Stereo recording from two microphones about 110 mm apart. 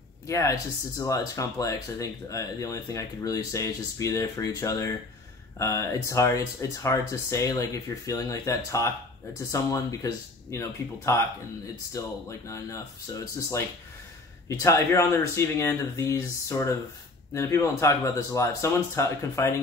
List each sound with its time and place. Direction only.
0.3 s speech: 30° left (ahead or behind)
14.6 s speech: 25° left (ahead or behind)